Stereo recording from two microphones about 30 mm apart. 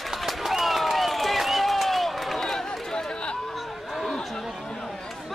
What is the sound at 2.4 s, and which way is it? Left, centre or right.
Run, centre.